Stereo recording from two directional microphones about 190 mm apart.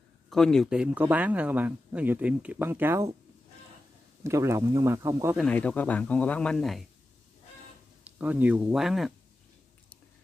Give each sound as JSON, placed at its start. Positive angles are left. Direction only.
{"t": 0.3, "sound": "speech", "side_deg": 0}
{"t": 4.2, "sound": "speech", "side_deg": -15}
{"t": 5.4, "sound": "speech", "side_deg": 5}
{"t": 8.0, "sound": "speech", "side_deg": -10}